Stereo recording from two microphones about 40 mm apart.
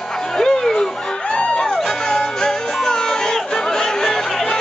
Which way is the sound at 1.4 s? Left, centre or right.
Left.